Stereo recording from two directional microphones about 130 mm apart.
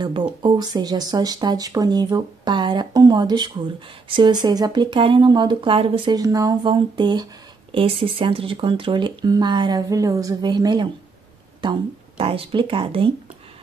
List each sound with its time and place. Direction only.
0.0 s speech: 35° right (ahead or behind)
6.1 s speech: 25° right (ahead or behind)
6.6 s speech: 35° right (ahead or behind)